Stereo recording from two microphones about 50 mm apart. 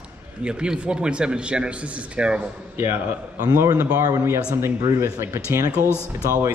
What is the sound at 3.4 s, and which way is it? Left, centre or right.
Speech, right.